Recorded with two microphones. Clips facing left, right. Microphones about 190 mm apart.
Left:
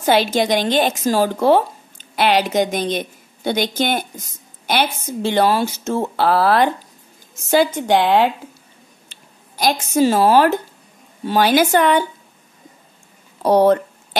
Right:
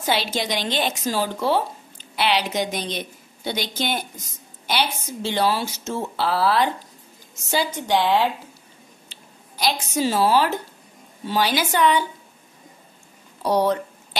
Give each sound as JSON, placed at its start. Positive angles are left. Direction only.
{"t": 0.0, "sound": "a woman's voice", "side_deg": 50}
{"t": 13.4, "sound": "speech", "side_deg": 50}